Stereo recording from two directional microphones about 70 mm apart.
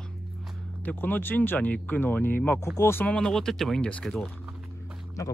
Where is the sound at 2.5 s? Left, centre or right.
Left.